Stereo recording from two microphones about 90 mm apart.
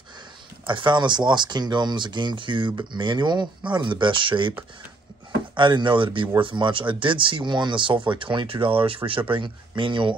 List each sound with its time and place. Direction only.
0.7 s speech: 60° right (ahead or behind)
5.6 s speech: 60° right (ahead or behind); by 9.2 s 90° right
9.3 s speech: 65° right (ahead or behind)